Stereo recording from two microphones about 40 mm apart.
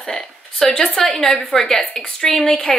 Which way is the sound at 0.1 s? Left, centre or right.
Centre.